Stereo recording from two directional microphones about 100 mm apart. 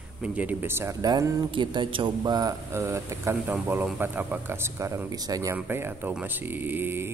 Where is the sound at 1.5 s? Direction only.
55° right (ahead or behind).